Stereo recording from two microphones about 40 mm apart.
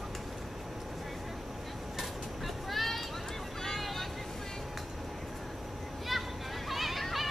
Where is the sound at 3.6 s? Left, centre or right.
Centre.